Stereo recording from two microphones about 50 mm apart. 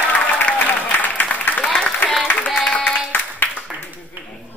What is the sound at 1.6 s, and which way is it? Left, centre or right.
Applause, left.